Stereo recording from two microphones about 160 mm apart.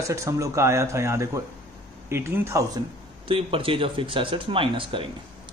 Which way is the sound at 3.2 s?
35° right (ahead or behind).